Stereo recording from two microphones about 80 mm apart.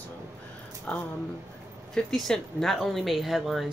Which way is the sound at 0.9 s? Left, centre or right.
Centre.